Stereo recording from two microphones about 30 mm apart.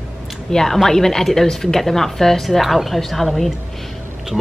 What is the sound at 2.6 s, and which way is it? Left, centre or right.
Speech, centre.